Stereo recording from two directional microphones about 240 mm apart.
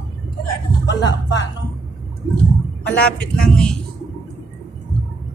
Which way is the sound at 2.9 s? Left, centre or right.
Centre.